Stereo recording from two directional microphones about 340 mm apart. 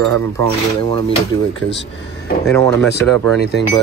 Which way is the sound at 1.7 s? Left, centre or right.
Left.